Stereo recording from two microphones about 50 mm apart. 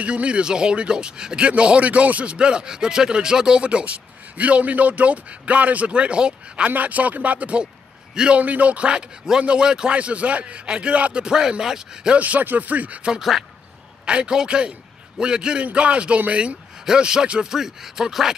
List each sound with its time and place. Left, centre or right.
0.0 s speech: right
8.1 s a man's voice: centre
8.4 s speech: right
11.2 s speech: centre
12.2 s speech: right
14.0 s speech: centre